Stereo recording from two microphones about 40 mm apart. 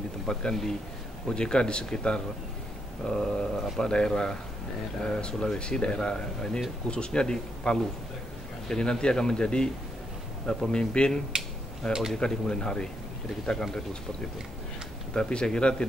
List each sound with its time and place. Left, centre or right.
0.3 s speech: centre
11.8 s speech: centre
12.2 s speech: left
15.1 s speech: left